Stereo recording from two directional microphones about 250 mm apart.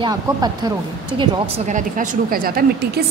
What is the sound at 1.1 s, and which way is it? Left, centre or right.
Speech, right.